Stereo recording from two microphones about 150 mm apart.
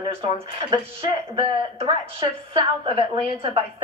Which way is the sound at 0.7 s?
35° right (ahead or behind).